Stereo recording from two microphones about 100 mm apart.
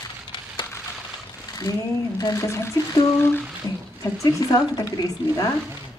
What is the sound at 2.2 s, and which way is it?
Speech, 35° left (ahead or behind).